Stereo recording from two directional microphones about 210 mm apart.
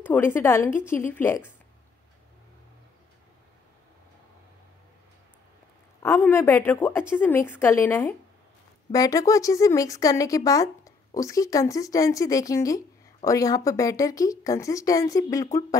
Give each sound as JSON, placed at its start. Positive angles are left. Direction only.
{"t": 0.0, "sound": "speech", "side_deg": 10}
{"t": 6.0, "sound": "speech", "side_deg": 10}